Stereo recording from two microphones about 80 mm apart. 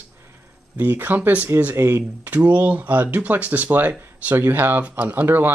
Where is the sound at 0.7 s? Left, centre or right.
Right.